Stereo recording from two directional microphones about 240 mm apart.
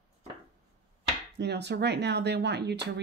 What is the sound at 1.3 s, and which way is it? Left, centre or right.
A woman's voice, right.